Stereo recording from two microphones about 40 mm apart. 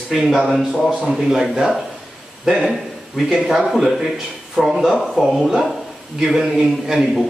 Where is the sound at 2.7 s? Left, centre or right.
Centre.